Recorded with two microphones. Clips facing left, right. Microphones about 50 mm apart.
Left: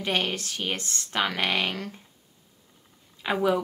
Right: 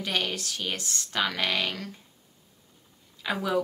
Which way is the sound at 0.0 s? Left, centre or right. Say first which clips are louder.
Left 2 dB; left.